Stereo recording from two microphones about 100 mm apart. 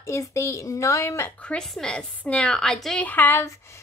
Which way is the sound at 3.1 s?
20° left (ahead or behind).